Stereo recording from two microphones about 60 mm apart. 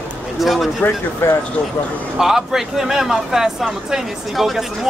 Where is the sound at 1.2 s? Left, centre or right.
Left.